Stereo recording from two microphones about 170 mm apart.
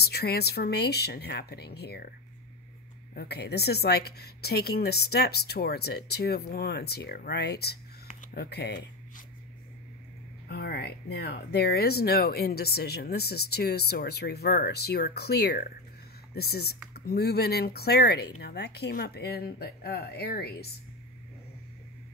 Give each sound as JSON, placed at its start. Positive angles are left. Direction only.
{"t": 0.0, "sound": "speech", "side_deg": 70}
{"t": 3.2, "sound": "speech", "side_deg": 70}
{"t": 10.5, "sound": "speech", "side_deg": 70}